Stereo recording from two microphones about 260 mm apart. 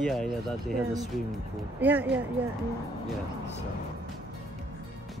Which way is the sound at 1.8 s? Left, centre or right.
Centre.